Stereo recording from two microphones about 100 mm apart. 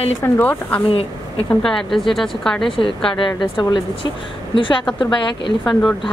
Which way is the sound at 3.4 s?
45° left (ahead or behind).